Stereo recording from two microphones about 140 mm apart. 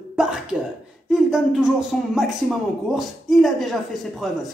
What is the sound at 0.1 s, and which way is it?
Throat clearing, 5° right (ahead or behind).